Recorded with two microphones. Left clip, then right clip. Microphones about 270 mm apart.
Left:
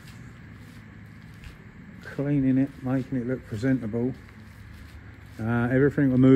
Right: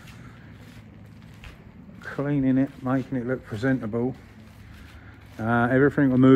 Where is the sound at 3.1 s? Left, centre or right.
Right.